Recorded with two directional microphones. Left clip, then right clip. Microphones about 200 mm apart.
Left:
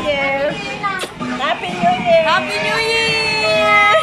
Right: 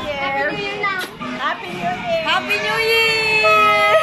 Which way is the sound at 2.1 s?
5° right (ahead or behind).